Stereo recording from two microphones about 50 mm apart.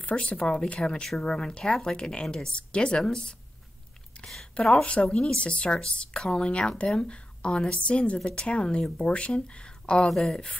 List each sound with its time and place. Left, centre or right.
0.0 s speech: left
4.2 s a sound: left
4.6 s speech: left